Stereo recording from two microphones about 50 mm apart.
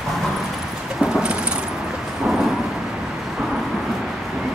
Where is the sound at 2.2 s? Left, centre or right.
Centre.